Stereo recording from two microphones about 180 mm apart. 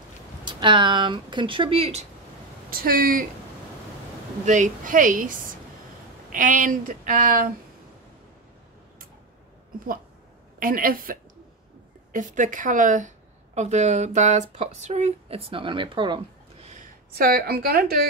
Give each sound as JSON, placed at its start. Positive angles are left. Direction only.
{"t": 0.5, "sound": "speech", "side_deg": -25}
{"t": 2.7, "sound": "speech", "side_deg": -55}
{"t": 4.5, "sound": "speech", "side_deg": -45}
{"t": 6.3, "sound": "speech", "side_deg": -45}
{"t": 10.6, "sound": "speech", "side_deg": -50}
{"t": 16.6, "sound": "a woman's voice", "side_deg": -45}